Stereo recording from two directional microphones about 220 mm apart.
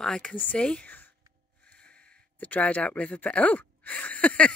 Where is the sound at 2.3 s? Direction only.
5° left (ahead or behind).